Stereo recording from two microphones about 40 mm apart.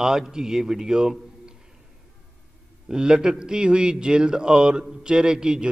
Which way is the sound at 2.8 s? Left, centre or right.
Centre.